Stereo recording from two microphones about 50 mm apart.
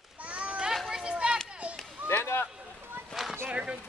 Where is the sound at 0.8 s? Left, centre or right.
Centre.